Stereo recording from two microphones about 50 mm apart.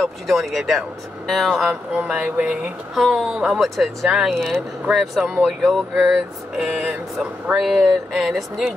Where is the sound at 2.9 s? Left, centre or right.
Centre.